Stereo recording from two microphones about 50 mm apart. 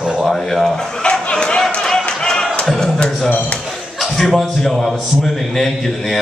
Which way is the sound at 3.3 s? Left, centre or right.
Left.